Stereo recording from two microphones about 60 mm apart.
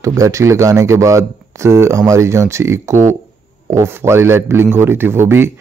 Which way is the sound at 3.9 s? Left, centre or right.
Right.